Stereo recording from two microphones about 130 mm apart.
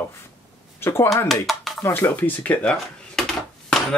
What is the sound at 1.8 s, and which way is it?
Speech, 20° left (ahead or behind).